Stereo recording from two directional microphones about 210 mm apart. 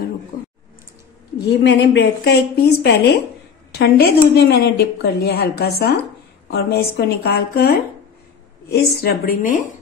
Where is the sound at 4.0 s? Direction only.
50° left (ahead or behind).